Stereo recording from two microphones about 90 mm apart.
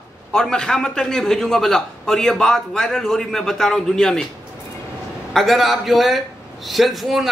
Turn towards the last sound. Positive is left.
turn(degrees=0)  # may be behind; listen again after turning